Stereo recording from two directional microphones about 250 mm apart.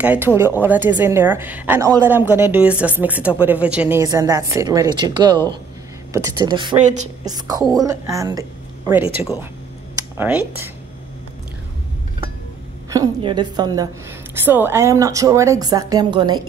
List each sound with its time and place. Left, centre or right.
0.0 s a woman's voice: centre
10.1 s a woman's voice: centre
12.9 s a woman's voice: centre